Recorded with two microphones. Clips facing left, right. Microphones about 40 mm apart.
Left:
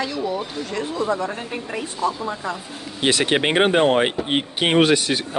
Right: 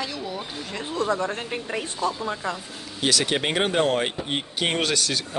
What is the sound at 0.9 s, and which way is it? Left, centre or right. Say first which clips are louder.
Speech: left 1 dB; left.